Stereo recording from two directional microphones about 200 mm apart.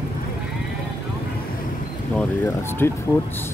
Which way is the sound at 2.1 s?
10° left (ahead or behind).